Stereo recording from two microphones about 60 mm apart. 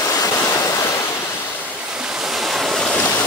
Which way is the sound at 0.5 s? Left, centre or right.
Left.